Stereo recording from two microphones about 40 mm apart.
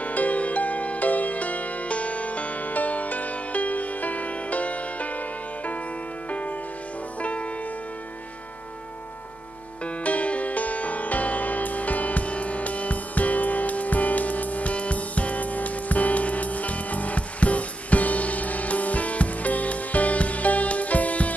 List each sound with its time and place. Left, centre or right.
0.0 s music: left
7.2 s music: left
9.8 s music: left